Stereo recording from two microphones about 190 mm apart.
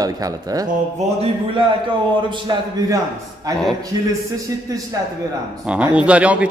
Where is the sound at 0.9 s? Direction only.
30° right (ahead or behind).